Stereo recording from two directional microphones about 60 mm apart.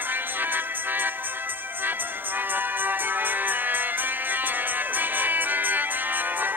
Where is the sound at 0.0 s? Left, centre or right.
Right.